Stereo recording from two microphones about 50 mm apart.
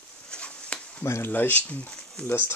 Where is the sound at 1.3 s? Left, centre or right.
Left.